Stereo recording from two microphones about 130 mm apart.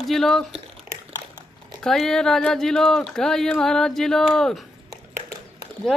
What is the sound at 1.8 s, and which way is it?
Speech, 5° left (ahead or behind).